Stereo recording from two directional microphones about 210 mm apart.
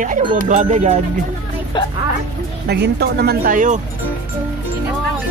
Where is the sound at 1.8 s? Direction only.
20° left (ahead or behind).